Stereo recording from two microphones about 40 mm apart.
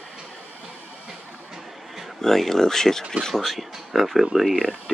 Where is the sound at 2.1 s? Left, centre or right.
Centre.